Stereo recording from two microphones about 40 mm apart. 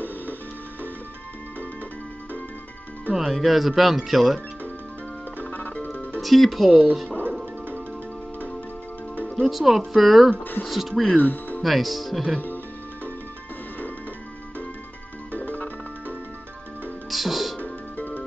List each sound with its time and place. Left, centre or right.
3.2 s speech: centre
5.4 s music: left
6.2 s speech: centre
9.3 s speech: centre
11.1 s speech: left
11.6 s speech: centre
15.3 s music: left
17.1 s music: centre
17.9 s music: left